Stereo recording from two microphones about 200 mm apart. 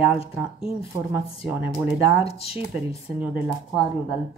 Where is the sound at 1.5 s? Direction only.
10° right (ahead or behind).